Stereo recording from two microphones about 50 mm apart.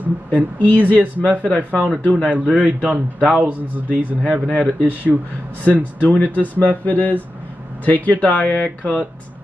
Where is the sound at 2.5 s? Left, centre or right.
Right.